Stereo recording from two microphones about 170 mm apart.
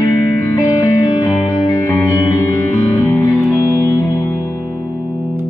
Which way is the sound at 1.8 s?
15° left (ahead or behind).